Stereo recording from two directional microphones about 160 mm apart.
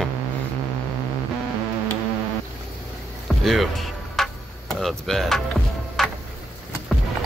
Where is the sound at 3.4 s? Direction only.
Centre (ahead or behind).